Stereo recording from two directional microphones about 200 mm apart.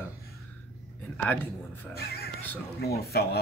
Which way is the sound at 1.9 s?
50° left (ahead or behind).